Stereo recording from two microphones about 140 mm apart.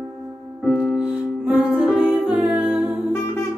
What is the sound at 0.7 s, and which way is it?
Music, 10° left (ahead or behind).